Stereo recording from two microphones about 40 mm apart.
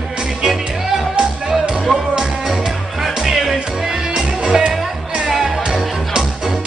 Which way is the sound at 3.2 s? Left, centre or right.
Centre.